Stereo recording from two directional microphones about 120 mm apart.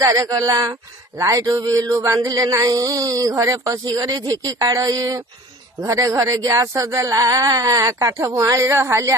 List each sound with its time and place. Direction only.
0.0 s speech: 30° right (ahead or behind)